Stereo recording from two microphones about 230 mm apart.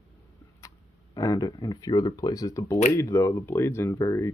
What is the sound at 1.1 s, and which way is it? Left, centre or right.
Speech, centre.